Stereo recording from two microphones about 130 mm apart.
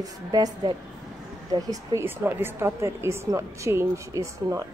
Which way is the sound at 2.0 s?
15° right (ahead or behind).